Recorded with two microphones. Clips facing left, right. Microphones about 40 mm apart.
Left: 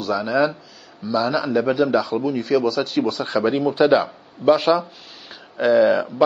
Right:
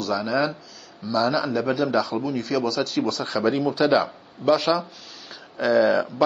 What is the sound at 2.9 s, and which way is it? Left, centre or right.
Speech, centre.